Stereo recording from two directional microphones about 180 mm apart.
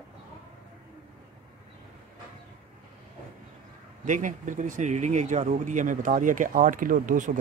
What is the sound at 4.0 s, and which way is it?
Speech, 45° right (ahead or behind).